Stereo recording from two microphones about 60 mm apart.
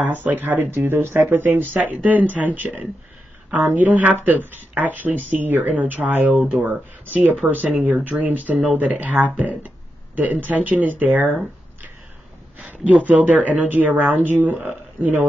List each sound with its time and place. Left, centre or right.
0.0 s speech: right